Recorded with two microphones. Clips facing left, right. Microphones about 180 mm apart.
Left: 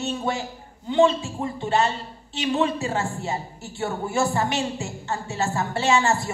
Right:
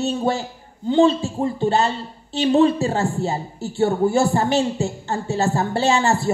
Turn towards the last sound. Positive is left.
turn(degrees=-35)  # may be behind; listen again after turning